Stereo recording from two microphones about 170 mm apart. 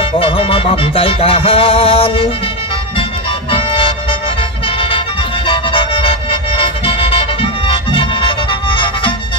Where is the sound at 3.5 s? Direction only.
35° left (ahead or behind).